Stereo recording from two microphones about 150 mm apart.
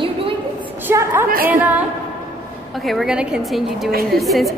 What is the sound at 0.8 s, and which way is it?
A woman's voice, 15° right (ahead or behind).